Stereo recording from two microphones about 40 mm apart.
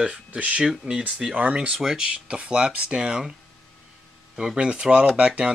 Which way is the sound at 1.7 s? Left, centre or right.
Centre.